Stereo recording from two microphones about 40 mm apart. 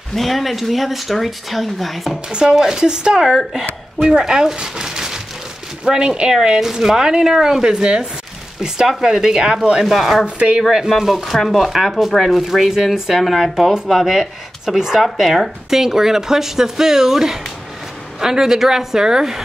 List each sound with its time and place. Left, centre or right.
0.1 s speech: centre
2.8 s speech: right
9.8 s speech: centre
10.2 s speech: right
10.7 s speech: centre
13.8 s speech: centre